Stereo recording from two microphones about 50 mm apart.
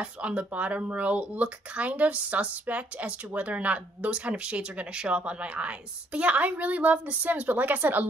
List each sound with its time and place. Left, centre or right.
0.0 s speech: right